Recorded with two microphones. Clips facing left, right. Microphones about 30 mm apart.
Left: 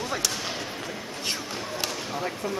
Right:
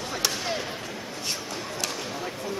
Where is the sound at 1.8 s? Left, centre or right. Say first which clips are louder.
Left 2 dB; centre.